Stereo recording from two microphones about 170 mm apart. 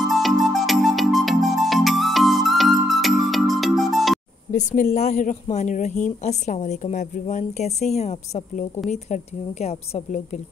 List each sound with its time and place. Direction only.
0.1 s music: centre (ahead or behind)
4.5 s a sound: 50° left (ahead or behind)
4.9 s a woman's voice: 45° left (ahead or behind)